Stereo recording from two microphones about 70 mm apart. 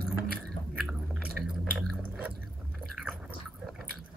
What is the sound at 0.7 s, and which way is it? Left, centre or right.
Chewing, centre.